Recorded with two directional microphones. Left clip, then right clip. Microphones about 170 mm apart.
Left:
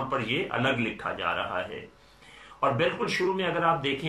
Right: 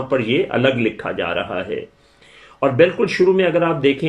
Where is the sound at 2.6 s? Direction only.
50° right (ahead or behind).